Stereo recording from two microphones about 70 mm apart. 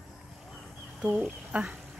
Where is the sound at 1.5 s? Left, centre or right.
Centre.